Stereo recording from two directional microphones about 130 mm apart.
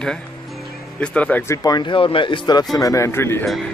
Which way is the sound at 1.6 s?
35° left (ahead or behind).